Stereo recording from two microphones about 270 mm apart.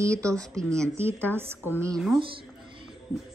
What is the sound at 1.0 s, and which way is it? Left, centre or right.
A woman's voice, centre.